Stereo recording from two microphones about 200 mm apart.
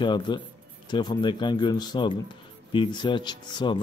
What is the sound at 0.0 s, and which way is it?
Speech, 20° left (ahead or behind).